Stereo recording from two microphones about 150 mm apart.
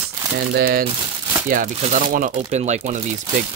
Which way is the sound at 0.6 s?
90° right.